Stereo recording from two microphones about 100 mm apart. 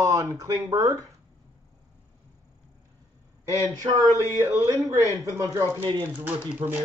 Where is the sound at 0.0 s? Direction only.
35° right (ahead or behind).